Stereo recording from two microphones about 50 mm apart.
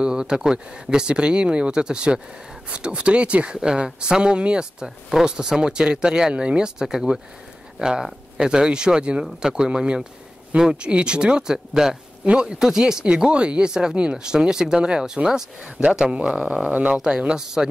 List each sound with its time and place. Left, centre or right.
0.0 s speech: centre
17.4 s speech: centre